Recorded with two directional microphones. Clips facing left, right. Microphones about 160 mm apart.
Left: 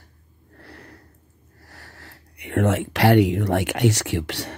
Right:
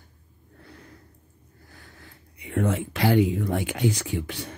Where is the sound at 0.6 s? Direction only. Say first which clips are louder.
Left 3 dB; 70° left (ahead or behind).